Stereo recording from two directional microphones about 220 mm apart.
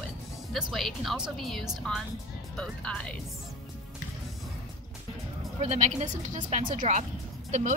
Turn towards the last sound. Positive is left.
turn(degrees=-30)  # may be behind; listen again after turning